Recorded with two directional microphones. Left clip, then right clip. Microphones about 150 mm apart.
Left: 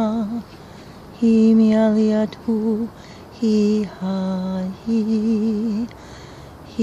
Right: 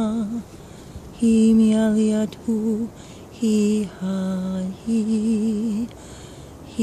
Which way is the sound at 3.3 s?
45° right (ahead or behind).